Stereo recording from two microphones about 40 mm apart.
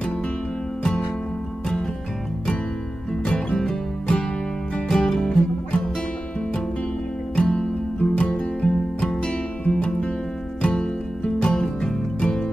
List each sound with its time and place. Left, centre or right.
3.3 s music: left
4.8 s music: centre
7.3 s music: left
8.6 s music: centre